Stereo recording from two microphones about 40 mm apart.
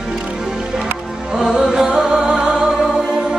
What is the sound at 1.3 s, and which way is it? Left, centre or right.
Music, centre.